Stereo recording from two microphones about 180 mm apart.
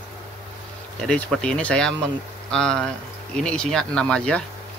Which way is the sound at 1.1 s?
5° left (ahead or behind).